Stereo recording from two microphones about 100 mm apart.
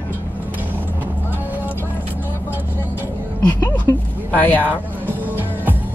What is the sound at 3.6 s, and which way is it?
Speech, 15° left (ahead or behind).